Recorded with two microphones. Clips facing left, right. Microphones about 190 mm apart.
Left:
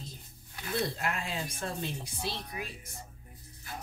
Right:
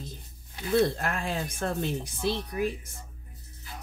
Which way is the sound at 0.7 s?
50° right (ahead or behind).